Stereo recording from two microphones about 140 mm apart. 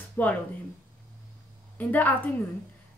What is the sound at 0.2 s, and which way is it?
Speech, 10° left (ahead or behind).